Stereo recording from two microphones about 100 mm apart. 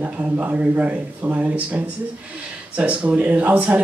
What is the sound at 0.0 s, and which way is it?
Speech, 15° right (ahead or behind).